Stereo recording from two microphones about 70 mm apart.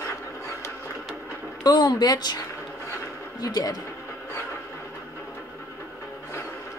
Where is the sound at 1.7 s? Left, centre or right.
Left.